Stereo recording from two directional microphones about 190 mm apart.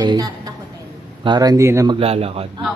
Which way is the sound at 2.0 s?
30° right (ahead or behind).